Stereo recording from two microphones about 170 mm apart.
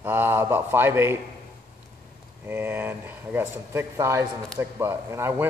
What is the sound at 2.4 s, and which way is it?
A man's voice, 10° right (ahead or behind).